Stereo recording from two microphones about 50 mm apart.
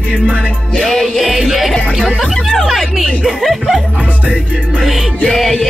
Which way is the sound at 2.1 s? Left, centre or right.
Centre.